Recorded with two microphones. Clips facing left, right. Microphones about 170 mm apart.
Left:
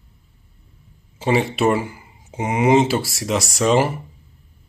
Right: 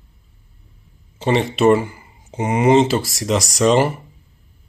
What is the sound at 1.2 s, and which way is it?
Speech, 5° left (ahead or behind).